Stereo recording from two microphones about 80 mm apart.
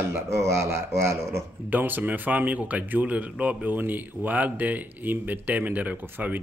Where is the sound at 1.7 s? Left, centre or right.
Right.